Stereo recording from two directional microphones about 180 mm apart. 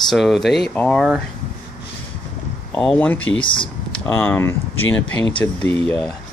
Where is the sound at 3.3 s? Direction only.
30° left (ahead or behind).